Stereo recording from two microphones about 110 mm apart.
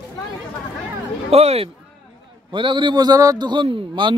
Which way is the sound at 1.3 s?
70° right (ahead or behind).